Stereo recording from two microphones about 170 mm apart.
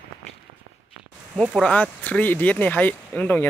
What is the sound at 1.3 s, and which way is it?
Speech, 5° right (ahead or behind).